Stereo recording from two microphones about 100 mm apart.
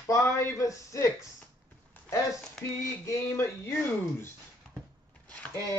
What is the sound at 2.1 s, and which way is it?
Speech, 30° left (ahead or behind).